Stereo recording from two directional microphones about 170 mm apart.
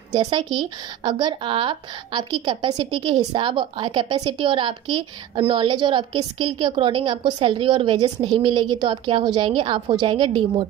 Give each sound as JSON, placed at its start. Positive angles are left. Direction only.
{"t": 0.1, "sound": "speech", "side_deg": -25}